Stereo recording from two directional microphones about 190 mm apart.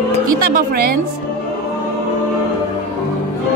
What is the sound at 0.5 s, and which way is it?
Speech, 55° right (ahead or behind).